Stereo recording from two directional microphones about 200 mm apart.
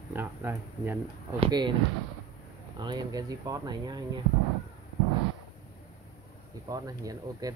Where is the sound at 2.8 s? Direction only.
20° right (ahead or behind).